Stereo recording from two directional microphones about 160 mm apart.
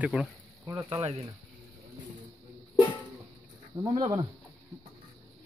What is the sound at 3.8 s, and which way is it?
Speech, 25° right (ahead or behind).